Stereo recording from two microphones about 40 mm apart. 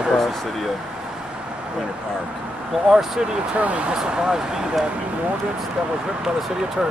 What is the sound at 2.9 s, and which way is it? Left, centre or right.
Speech, centre.